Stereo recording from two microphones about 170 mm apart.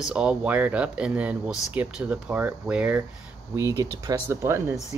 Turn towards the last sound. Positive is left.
turn(degrees=-15)  # may be behind; listen again after turning